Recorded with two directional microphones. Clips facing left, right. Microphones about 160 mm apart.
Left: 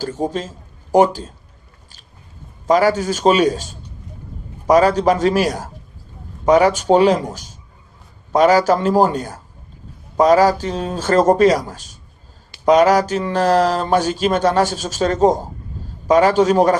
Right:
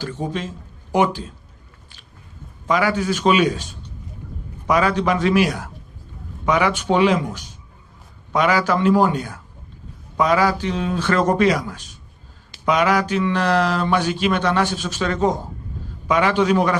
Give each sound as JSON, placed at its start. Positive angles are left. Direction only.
{"t": 0.0, "sound": "speech", "side_deg": 45}
{"t": 2.6, "sound": "speech", "side_deg": 40}
{"t": 4.6, "sound": "speech", "side_deg": 40}